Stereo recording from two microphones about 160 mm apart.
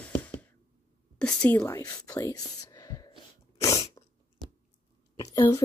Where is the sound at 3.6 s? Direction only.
25° left (ahead or behind).